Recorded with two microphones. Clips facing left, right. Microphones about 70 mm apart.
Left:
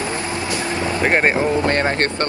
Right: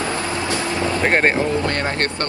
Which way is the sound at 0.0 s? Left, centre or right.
Left.